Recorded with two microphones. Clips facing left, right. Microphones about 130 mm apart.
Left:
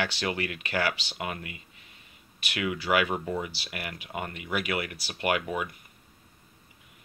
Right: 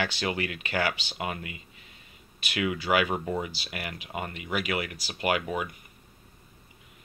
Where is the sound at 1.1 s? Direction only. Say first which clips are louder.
Right 1 dB; 20° right (ahead or behind).